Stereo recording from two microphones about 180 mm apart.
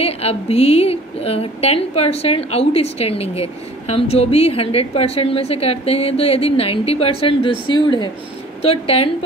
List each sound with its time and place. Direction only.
0.0 s a woman's voice: 35° left (ahead or behind)